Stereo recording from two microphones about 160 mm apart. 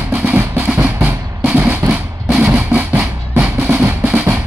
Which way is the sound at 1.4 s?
10° right (ahead or behind).